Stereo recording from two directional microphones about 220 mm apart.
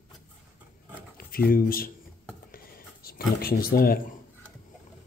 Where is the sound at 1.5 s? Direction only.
40° left (ahead or behind).